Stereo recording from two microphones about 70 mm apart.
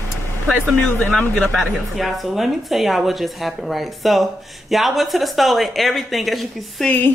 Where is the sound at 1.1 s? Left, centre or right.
Centre.